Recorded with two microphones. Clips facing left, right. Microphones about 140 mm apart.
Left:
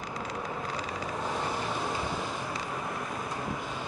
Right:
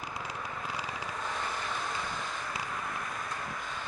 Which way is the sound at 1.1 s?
20° left (ahead or behind).